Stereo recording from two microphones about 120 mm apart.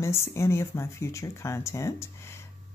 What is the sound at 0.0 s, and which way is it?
A woman's voice, 20° left (ahead or behind).